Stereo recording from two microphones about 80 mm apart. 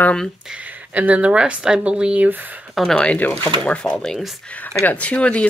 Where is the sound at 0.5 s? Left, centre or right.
Centre.